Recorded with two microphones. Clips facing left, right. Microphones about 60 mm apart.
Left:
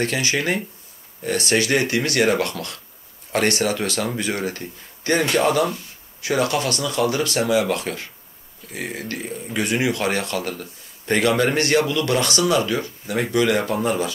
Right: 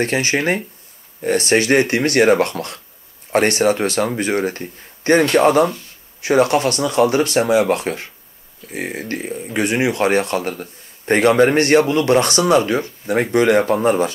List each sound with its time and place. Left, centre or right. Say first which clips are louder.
0.0 s speech: right 4 dB; right